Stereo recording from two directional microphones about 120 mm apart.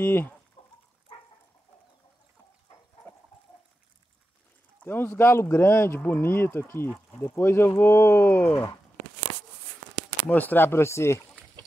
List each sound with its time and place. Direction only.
0.0 s speech: 15° left (ahead or behind)
0.6 s dog: 50° left (ahead or behind)
4.8 s speech: 15° left (ahead or behind)
10.3 s speech: 15° left (ahead or behind)